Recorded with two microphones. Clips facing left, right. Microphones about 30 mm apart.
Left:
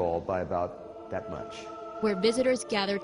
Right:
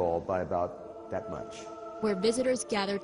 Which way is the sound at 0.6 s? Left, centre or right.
Left.